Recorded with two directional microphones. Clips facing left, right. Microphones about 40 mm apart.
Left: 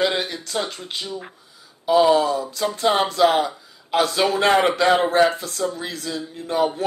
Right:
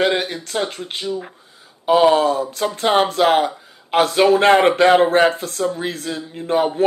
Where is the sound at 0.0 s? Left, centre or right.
Right.